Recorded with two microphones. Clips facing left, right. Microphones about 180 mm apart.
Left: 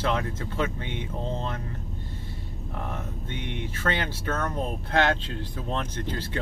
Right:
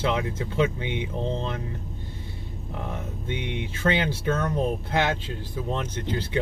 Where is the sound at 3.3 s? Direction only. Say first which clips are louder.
Right 4 dB; 15° right (ahead or behind).